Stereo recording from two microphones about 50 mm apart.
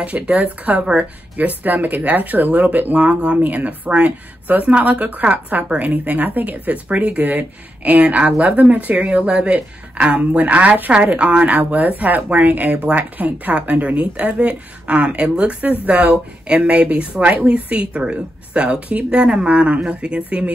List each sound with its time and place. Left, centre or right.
0.0 s a woman's voice: right